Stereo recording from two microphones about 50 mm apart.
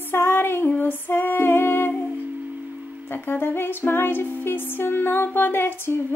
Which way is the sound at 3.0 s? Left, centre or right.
Left.